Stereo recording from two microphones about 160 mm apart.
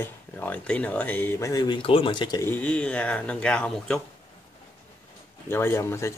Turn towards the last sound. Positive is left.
turn(degrees=15)  # may be behind; listen again after turning